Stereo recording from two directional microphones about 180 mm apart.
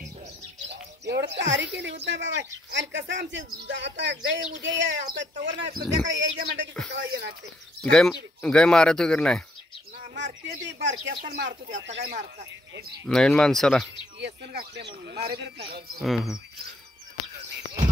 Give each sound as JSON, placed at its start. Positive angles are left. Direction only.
{"t": 1.0, "sound": "speech", "side_deg": -70}
{"t": 5.0, "sound": "speech", "side_deg": -80}
{"t": 7.0, "sound": "speech", "side_deg": -70}
{"t": 7.9, "sound": "speech", "side_deg": 5}
{"t": 10.1, "sound": "speech", "side_deg": -80}
{"t": 13.1, "sound": "speech", "side_deg": 5}
{"t": 14.2, "sound": "speech", "side_deg": -65}
{"t": 16.0, "sound": "speech", "side_deg": 0}